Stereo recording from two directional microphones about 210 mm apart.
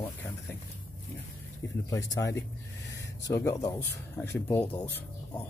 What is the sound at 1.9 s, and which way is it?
Speech, 15° left (ahead or behind).